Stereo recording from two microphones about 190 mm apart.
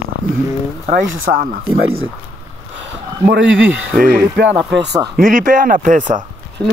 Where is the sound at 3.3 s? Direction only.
75° right (ahead or behind).